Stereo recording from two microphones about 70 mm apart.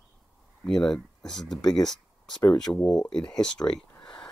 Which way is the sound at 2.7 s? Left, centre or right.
Left.